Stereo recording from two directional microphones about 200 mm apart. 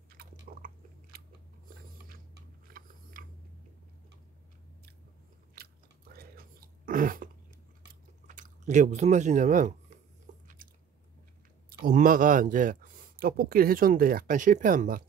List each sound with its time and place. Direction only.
0.2 s biting: 50° right (ahead or behind)
2.3 s a sound: 45° right (ahead or behind)
5.5 s chewing: 50° right (ahead or behind)
11.8 s speech: 45° right (ahead or behind)